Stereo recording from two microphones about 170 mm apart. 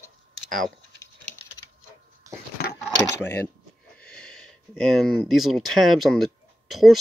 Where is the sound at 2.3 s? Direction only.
20° right (ahead or behind).